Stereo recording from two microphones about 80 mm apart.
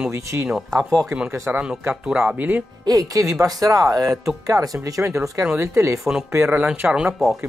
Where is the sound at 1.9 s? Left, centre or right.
Centre.